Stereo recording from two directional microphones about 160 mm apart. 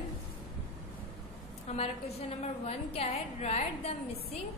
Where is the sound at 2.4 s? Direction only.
40° left (ahead or behind).